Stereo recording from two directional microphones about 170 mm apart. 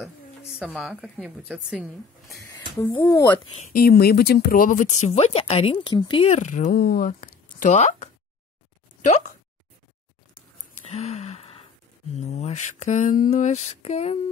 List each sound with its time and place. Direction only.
0.7 s speech: centre (ahead or behind)
3.0 s speech: 15° left (ahead or behind)
3.7 s speech: 65° left (ahead or behind); by 6.3 s 30° left (ahead or behind)
6.3 s speech: 45° left (ahead or behind)
6.8 s speech: 60° left (ahead or behind); by 9.3 s 45° left (ahead or behind)
10.9 s a sound: 40° left (ahead or behind)